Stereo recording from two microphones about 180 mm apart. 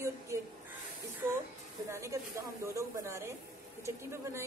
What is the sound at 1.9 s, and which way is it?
A woman's voice, 15° right (ahead or behind).